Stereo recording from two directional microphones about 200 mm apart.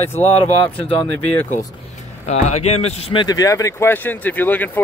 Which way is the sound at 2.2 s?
35° left (ahead or behind).